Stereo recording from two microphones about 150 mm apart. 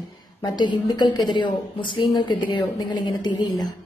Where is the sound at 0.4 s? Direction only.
30° left (ahead or behind).